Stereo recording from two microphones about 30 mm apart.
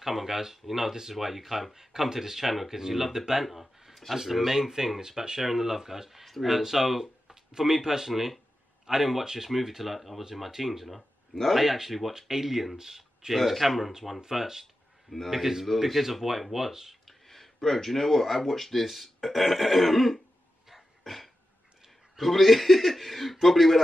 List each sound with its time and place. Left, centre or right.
0.0 s speech: centre
1.7 s speech: centre
11.0 s a sound: centre
11.5 s speech: centre
12.1 s speech: centre
13.3 s speech: centre
17.0 s speech: centre
20.7 s dog: centre
22.2 s speech: centre